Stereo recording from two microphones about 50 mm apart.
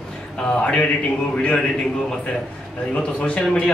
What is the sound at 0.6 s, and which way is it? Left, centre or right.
A man's voice, left.